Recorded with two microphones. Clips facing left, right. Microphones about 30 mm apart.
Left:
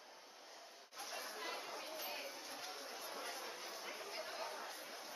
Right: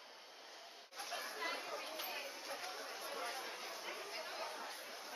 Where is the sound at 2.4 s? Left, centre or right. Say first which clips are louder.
Right 3 dB; centre.